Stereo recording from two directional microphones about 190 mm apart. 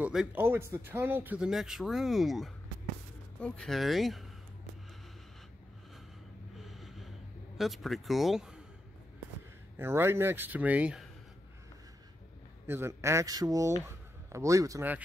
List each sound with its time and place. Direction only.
0.0 s speech: 5° right (ahead or behind)
6.6 s gasp: centre (ahead or behind)
9.8 s speech: 10° right (ahead or behind)
12.6 s speech: 10° right (ahead or behind)